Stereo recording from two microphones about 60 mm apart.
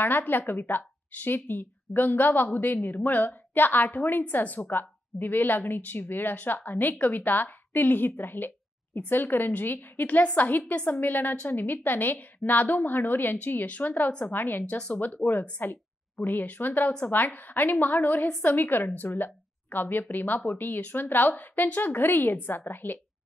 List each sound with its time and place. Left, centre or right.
0.0 s a woman's voice: left
15.2 s speech: left
15.6 s a woman's voice: left